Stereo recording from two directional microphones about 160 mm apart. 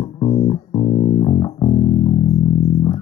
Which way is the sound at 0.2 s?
30° left (ahead or behind).